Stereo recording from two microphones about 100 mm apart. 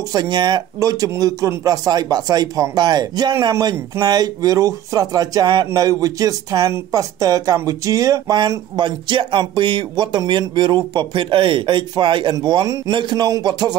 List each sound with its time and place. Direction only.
0.1 s speech: 45° right (ahead or behind)
12.4 s speech: 45° right (ahead or behind)